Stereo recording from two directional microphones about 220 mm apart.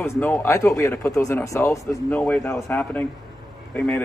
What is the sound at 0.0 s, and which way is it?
Speech, 10° left (ahead or behind).